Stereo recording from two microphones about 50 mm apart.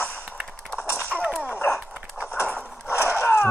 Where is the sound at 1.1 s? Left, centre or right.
Centre.